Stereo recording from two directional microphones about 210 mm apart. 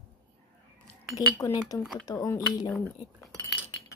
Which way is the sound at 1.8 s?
Centre (ahead or behind).